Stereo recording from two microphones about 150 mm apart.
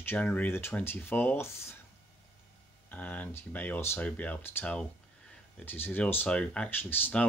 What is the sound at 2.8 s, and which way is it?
Speech, 10° left (ahead or behind).